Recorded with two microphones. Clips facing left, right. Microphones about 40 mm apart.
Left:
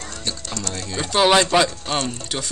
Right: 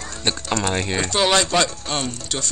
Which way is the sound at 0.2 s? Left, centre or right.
Right.